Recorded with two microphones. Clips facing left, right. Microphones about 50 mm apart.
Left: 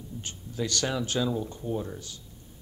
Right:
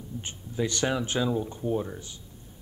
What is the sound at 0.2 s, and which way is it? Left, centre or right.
Speech, right.